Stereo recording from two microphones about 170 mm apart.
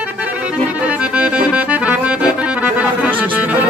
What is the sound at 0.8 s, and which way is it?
Accordion, 5° right (ahead or behind).